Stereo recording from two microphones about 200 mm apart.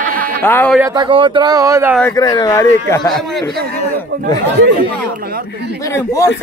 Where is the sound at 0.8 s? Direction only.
20° right (ahead or behind).